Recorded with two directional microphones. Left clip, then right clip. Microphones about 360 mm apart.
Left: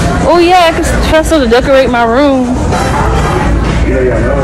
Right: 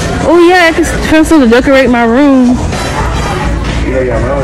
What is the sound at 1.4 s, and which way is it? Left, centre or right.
Speech, centre.